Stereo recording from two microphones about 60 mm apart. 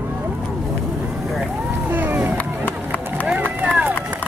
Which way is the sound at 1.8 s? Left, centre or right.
Right.